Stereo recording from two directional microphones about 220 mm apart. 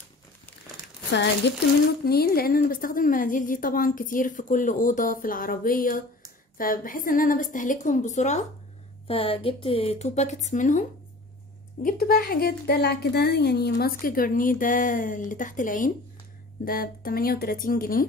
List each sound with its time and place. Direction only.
1.5 s a woman's voice: 50° left (ahead or behind)